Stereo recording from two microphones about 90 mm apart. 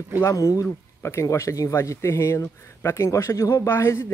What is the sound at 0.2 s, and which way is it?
Speech, 35° left (ahead or behind).